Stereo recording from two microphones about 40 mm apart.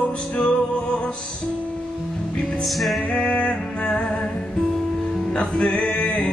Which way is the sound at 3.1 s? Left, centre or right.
Left.